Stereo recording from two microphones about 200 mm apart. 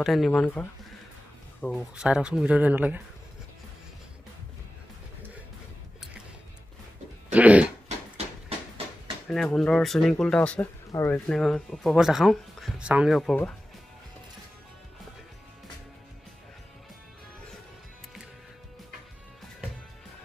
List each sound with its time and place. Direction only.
0.0 s speech: centre (ahead or behind)
7.3 s dog: 5° right (ahead or behind)
8.5 s a sound: 25° right (ahead or behind)
9.3 s speech: centre (ahead or behind)